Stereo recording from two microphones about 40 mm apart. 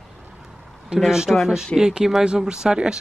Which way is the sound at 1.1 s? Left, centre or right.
Centre.